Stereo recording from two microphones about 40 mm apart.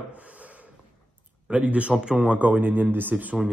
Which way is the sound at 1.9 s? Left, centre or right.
Right.